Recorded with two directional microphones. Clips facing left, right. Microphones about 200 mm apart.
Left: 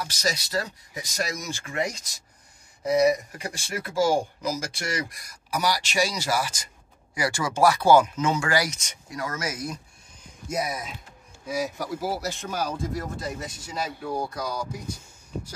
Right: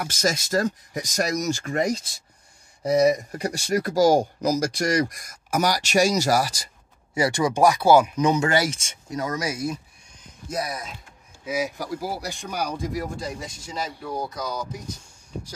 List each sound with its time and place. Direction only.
0.0 s speech: 50° right (ahead or behind)
7.2 s speech: 20° right (ahead or behind)
11.4 s speech: centre (ahead or behind)